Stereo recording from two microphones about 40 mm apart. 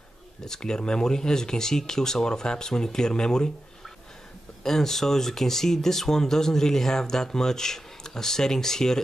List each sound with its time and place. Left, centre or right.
0.5 s speech: centre
4.6 s speech: centre